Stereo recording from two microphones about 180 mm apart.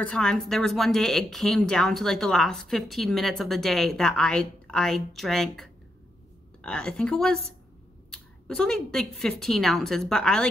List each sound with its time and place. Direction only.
0.0 s speech: 5° left (ahead or behind)